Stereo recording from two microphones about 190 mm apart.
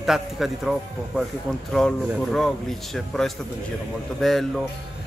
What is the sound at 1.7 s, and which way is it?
Speech, centre (ahead or behind).